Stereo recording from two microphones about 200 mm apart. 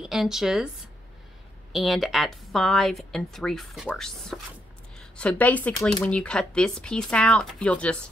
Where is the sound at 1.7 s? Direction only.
Centre (ahead or behind).